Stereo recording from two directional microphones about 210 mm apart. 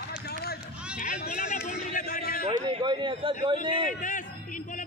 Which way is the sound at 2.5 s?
25° right (ahead or behind).